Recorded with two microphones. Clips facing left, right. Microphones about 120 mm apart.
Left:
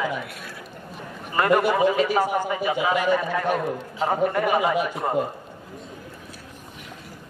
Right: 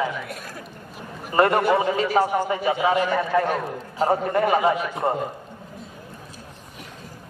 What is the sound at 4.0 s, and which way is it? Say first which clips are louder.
Speech: right 2 dB; 35° right (ahead or behind).